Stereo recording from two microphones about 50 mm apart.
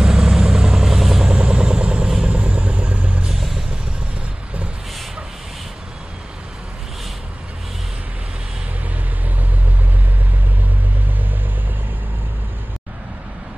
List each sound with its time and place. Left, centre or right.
0.0 s vehicle: centre
1.3 s vehicle: centre
3.3 s vehicle: centre